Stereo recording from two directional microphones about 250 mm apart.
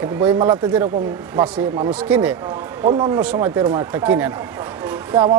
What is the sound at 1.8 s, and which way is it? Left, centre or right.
Speech, centre.